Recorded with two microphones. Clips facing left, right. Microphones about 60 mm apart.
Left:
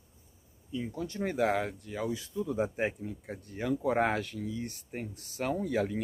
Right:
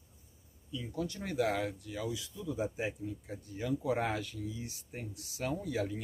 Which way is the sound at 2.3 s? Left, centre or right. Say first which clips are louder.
Left 7 dB; left.